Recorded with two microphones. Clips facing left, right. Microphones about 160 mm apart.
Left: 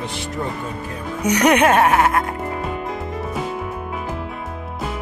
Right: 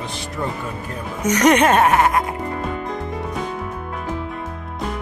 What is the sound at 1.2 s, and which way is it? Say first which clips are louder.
Speech: even; 10° left (ahead or behind).